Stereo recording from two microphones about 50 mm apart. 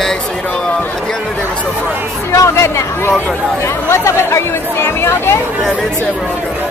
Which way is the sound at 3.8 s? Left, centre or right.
Left.